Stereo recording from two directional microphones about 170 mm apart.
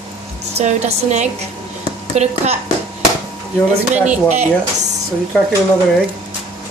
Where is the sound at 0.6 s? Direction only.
45° right (ahead or behind).